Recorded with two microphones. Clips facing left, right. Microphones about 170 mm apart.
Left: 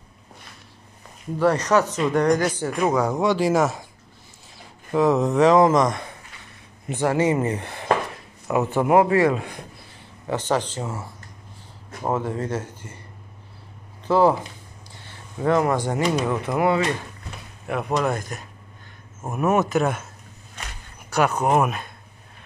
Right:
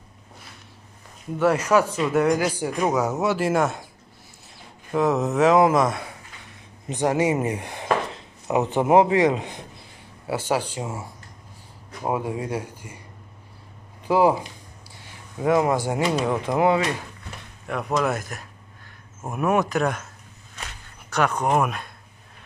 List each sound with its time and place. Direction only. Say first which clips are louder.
1.4 s speech: even; 5° right (ahead or behind)
4.9 s speech: left 2 dB; centre (ahead or behind)
6.9 s a man's voice: left 1 dB; 15° right (ahead or behind)
10.2 s speech: left 1 dB; 10° right (ahead or behind)
14.0 s speech: left 1 dB; 10° right (ahead or behind)
15.4 s speech: even; 10° right (ahead or behind)
17.6 s speech: left 1 dB; centre (ahead or behind)
21.1 s speech: left 2 dB; 10° left (ahead or behind)